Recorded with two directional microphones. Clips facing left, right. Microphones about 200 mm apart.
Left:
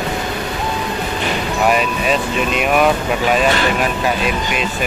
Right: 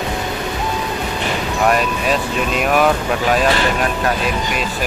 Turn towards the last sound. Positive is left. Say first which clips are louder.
# left 1 dB
turn(degrees=5)  # may be behind; listen again after turning